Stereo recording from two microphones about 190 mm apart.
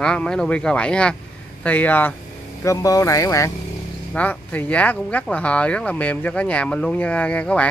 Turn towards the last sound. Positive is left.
turn(degrees=5)  # may be behind; listen again after turning